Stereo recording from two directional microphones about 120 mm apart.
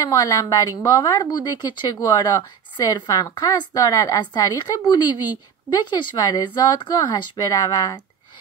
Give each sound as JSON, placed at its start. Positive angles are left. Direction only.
{"t": 0.0, "sound": "a woman's voice", "side_deg": 30}